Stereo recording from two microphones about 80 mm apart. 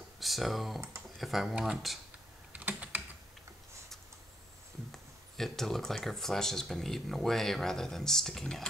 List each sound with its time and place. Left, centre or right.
0.2 s speech: centre
2.5 s typing: centre
4.9 s speech: centre